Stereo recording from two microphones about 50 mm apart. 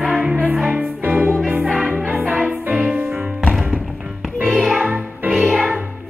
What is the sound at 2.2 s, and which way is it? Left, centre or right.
Music, right.